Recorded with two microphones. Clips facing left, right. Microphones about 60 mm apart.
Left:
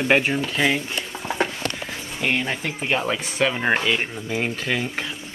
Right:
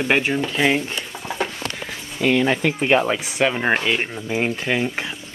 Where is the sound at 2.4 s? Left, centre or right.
Right.